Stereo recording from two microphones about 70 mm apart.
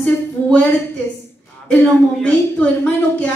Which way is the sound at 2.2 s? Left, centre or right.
Centre.